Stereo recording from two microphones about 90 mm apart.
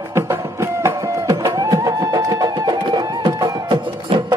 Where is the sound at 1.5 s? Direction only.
45° right (ahead or behind).